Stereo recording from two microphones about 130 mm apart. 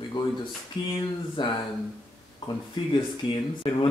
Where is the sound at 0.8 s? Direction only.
35° left (ahead or behind).